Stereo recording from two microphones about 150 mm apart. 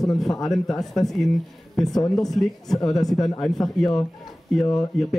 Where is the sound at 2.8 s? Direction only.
25° left (ahead or behind).